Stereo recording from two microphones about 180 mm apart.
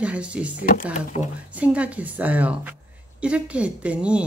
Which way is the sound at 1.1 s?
40° left (ahead or behind).